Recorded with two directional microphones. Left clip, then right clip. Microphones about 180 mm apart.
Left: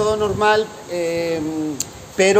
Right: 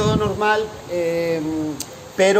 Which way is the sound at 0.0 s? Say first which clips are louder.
Left 2 dB; 25° left (ahead or behind).